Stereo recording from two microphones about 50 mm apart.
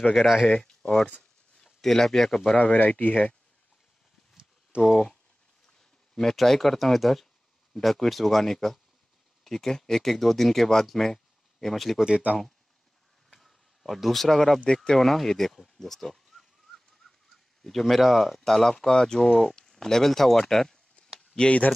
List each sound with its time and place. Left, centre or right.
0.1 s speech: centre
0.5 s speech: centre
2.5 s speech: left
4.7 s speech: right
5.8 s speech: centre
13.3 s a sound: centre
14.9 s speech: centre
17.6 s speech: centre
21.4 s speech: left